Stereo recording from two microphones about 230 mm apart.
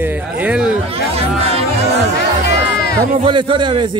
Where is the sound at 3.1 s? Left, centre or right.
Right.